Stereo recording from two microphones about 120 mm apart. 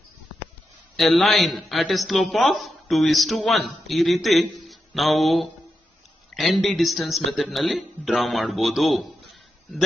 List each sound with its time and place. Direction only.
0.9 s a man's voice: centre (ahead or behind)